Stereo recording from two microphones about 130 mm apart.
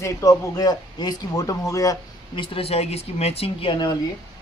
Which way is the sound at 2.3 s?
45° left (ahead or behind).